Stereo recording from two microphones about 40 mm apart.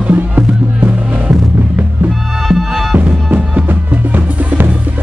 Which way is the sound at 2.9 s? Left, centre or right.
Right.